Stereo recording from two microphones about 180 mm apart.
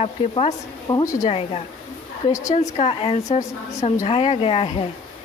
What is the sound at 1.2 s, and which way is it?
A woman's voice, 35° left (ahead or behind).